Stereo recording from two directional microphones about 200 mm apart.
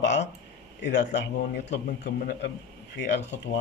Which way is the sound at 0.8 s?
60° left (ahead or behind).